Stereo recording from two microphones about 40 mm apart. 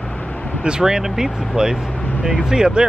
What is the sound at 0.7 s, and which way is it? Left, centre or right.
Speech, centre.